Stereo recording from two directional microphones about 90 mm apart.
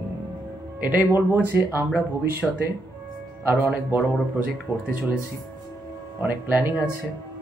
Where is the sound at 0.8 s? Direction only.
20° right (ahead or behind).